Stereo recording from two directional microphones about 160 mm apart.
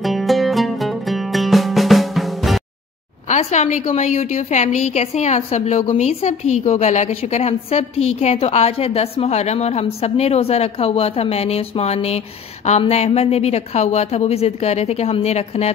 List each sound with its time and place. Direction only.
0.0 s music: centre (ahead or behind)
3.3 s a woman's voice: 45° left (ahead or behind)